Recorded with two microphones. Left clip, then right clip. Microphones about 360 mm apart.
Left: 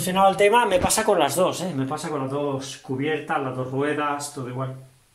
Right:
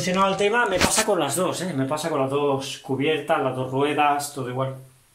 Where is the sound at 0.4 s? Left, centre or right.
Left.